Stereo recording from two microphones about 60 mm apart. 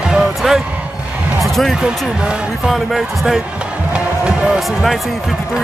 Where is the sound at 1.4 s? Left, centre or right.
Centre.